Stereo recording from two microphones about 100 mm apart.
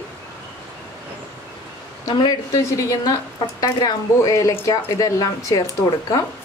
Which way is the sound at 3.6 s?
40° left (ahead or behind).